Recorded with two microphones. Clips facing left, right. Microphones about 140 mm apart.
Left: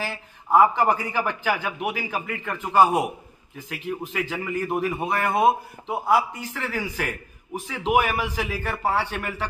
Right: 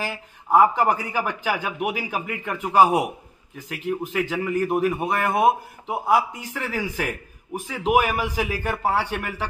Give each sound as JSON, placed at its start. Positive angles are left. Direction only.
{"t": 0.1, "sound": "a man's voice", "side_deg": -10}